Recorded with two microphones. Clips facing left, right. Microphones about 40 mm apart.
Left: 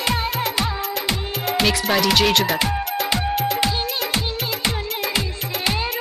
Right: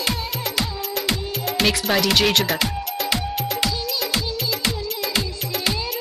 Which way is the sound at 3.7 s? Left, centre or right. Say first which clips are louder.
Left 2 dB; left.